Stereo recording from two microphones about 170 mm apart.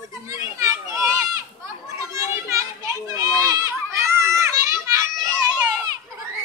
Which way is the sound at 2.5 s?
20° right (ahead or behind).